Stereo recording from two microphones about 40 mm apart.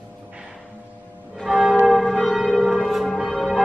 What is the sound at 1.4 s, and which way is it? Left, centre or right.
Church bell, centre.